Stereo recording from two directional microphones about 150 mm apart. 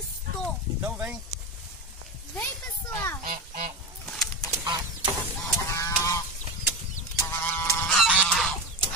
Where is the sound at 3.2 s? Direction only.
65° right (ahead or behind).